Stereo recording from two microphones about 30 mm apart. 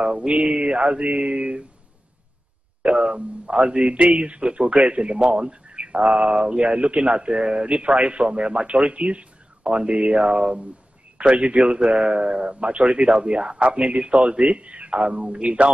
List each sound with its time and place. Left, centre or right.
0.0 s speech: right
3.5 s speech: right
5.9 s mantra: right
6.3 s speech: right
13.6 s speech: right